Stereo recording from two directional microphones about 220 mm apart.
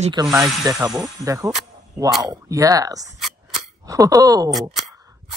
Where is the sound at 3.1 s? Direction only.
Centre (ahead or behind).